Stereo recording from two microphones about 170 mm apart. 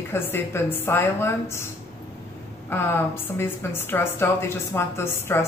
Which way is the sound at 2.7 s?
15° left (ahead or behind).